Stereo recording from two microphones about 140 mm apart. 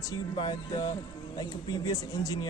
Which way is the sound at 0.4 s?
30° left (ahead or behind).